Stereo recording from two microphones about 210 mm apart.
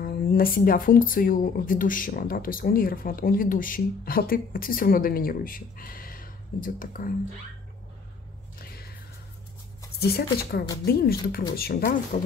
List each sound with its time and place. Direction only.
0.0 s speech: 45° left (ahead or behind)
8.5 s squish: 45° left (ahead or behind)
9.9 s speech: 50° left (ahead or behind)